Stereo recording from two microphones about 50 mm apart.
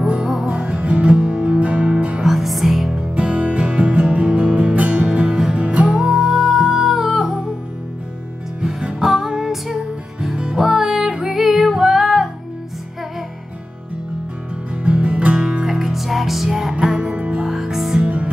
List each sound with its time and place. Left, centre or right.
0.0 s music: right
2.2 s music: centre
3.2 s music: right
5.9 s music: centre
6.8 s humming: centre
9.0 s music: centre
10.3 s music: centre
10.6 s music: centre
14.8 s music: right; by 17.1 s centre
17.1 s music: right
17.5 s music: centre
18.0 s music: right